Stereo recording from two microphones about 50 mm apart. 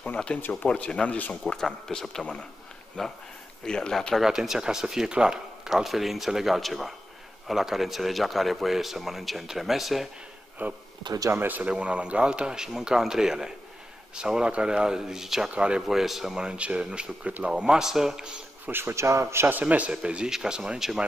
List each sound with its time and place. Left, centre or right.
0.4 s speech: left
0.7 s speech: centre
4.2 s speech: centre
10.6 s speech: right
11.7 s speech: right
15.5 s speech: right
15.8 s speech: centre
16.3 s speech: right
18.7 s speech: right
18.9 s a man's voice: right
19.6 s speech: right